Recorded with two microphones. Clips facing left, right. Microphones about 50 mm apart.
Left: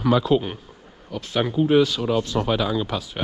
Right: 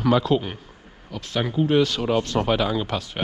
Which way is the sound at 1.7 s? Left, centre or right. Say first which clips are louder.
Left 1 dB; right.